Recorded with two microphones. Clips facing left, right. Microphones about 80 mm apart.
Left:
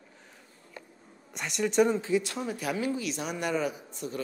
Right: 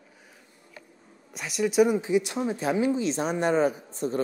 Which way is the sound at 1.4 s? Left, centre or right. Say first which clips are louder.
Right 3 dB; centre.